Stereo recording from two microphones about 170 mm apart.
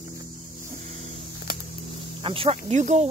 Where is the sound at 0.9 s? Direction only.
45° right (ahead or behind).